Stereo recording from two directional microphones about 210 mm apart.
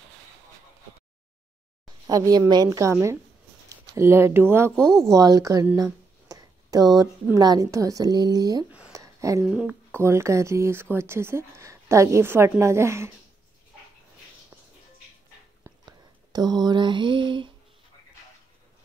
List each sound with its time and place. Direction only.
2.0 s speech: 15° right (ahead or behind)
4.7 s speech: 5° left (ahead or behind)
5.1 s speech: 15° right (ahead or behind)
8.7 s a sound: 10° right (ahead or behind)
9.5 s speech: 5° right (ahead or behind)
15.6 s a sound: 20° right (ahead or behind)